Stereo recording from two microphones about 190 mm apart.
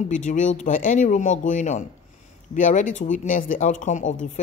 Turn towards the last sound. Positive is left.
turn(degrees=40)  # may be behind; listen again after turning